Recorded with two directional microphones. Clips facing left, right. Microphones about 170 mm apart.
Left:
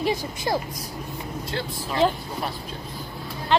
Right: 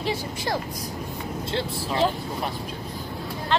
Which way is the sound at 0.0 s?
15° left (ahead or behind).